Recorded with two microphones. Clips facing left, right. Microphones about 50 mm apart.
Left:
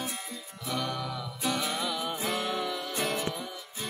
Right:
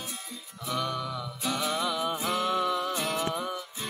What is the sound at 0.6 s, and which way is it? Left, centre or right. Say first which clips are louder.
Music: right 2 dB; centre.